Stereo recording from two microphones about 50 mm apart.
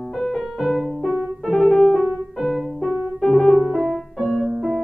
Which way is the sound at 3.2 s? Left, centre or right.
Centre.